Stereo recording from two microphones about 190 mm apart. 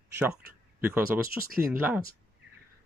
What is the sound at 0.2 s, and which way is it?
Speech, 10° right (ahead or behind).